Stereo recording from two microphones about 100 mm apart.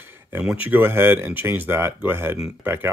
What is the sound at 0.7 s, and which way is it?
Speech, 20° right (ahead or behind).